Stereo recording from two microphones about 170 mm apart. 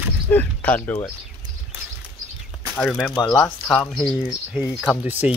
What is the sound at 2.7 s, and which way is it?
Speech, 10° left (ahead or behind).